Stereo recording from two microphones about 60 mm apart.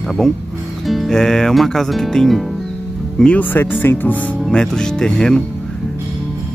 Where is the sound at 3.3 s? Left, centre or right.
Left.